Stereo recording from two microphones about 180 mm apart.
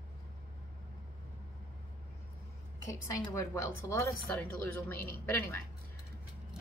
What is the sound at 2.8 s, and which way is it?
A woman's voice, 15° left (ahead or behind).